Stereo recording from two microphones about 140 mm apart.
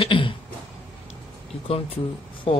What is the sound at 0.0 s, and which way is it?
Throat clearing, 40° left (ahead or behind).